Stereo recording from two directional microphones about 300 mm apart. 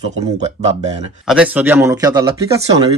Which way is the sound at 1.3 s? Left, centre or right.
Centre.